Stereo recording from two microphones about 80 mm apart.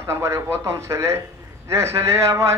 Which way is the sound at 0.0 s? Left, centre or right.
Right.